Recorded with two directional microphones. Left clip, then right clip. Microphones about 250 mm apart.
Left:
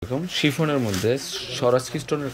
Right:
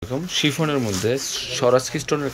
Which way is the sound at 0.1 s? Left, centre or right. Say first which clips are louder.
Right 2 dB; centre.